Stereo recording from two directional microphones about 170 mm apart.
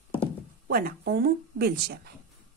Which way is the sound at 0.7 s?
60° right (ahead or behind).